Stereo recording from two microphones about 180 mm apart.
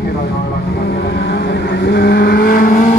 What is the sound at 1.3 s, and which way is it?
Vehicle, 80° left.